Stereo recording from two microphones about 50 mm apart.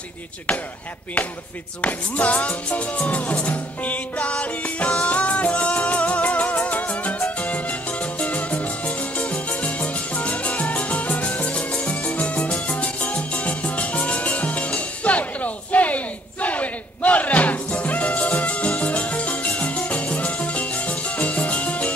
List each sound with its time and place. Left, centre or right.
1.8 s music: left